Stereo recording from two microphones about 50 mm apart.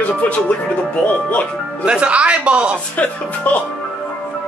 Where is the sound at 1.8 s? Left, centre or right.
Right.